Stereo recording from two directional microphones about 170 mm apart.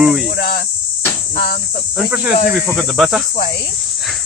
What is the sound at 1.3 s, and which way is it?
Speech, 55° left (ahead or behind).